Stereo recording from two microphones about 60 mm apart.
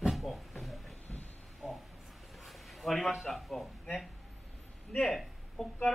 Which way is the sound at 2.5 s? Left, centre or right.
Centre.